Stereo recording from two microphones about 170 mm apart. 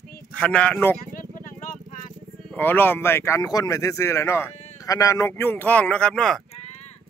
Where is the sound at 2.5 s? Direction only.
10° left (ahead or behind).